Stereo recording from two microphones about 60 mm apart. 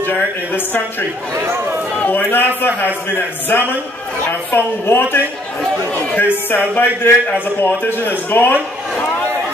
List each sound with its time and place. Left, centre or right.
0.0 s a woman's voice: left
1.3 s speech: right
2.0 s a man's voice: left